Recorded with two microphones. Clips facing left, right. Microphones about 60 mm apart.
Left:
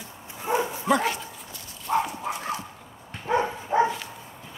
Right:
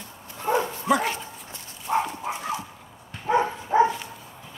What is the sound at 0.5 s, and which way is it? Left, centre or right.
Bow-wow, centre.